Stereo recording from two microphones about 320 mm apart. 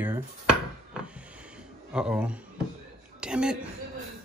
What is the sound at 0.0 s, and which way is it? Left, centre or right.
Speech, centre.